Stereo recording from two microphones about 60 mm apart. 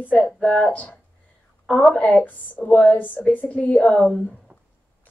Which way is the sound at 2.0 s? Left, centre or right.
Left.